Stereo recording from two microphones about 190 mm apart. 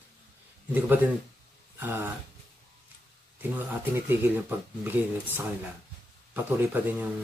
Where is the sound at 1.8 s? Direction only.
10° right (ahead or behind).